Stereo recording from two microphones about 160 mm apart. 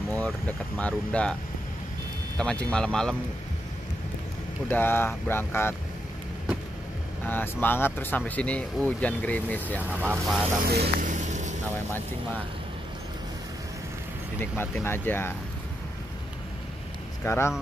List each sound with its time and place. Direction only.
0.1 s speech: 10° left (ahead or behind)
2.3 s speech: 5° left (ahead or behind)
4.6 s speech: 15° left (ahead or behind)
7.2 s speech: 10° left (ahead or behind)
9.8 s speech: 10° right (ahead or behind)
10.6 s speech: 75° right (ahead or behind)
11.1 s vehicle: 50° right (ahead or behind)
14.4 s speech: 15° left (ahead or behind)
17.2 s speech: 15° left (ahead or behind)